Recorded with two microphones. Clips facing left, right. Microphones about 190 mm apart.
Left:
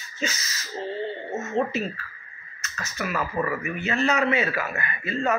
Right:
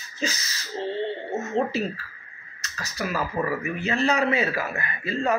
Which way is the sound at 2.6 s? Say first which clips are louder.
Right 1 dB; 35° right (ahead or behind).